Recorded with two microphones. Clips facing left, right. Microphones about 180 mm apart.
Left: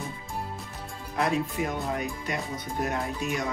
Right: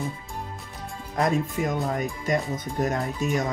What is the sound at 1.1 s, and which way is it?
Speech, 45° right (ahead or behind).